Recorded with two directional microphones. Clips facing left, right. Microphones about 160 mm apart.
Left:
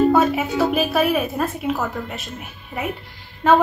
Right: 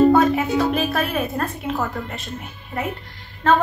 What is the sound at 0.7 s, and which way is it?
A woman's voice, 5° left (ahead or behind).